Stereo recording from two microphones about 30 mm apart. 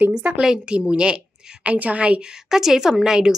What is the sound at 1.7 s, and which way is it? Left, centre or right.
Speech, right.